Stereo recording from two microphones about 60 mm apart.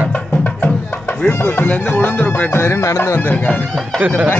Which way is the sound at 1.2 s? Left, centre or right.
Left.